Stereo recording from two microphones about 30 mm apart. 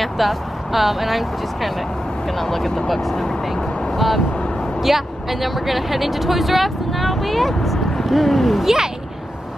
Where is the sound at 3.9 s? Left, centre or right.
Centre.